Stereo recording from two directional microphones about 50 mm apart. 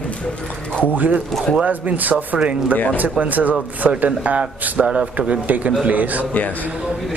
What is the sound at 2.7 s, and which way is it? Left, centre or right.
Speech, left.